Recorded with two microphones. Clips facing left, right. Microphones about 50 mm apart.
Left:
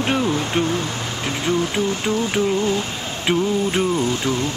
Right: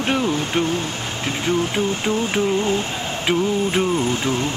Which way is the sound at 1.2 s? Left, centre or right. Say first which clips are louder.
Even; right.